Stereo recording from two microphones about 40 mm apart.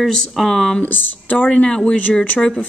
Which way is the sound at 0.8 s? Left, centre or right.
Left.